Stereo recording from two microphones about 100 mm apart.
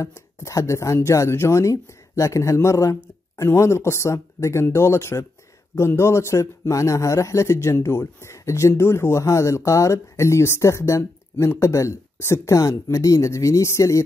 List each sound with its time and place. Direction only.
0.0 s speech: 30° left (ahead or behind)